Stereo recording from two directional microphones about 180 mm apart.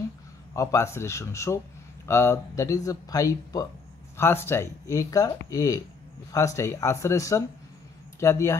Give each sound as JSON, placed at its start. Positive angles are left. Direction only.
{"t": 0.6, "sound": "speech", "side_deg": 15}